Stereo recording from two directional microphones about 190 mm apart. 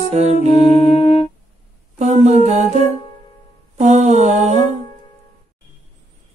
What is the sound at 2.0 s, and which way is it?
Humming, 40° right (ahead or behind).